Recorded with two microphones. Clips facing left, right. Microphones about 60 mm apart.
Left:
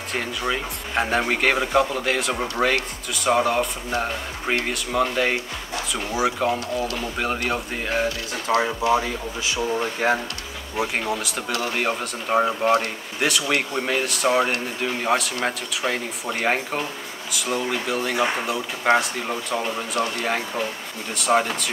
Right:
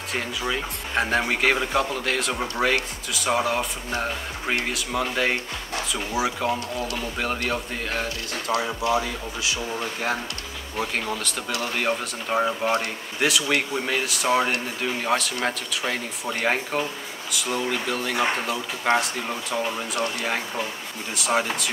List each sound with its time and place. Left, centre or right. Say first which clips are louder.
0.5 s speech: left 2 dB; centre
8.5 s speech: left 4 dB; left
10.0 s speech: left 6 dB; left
10.8 s speech: left 3 dB; centre
21.1 s speech: left 3 dB; centre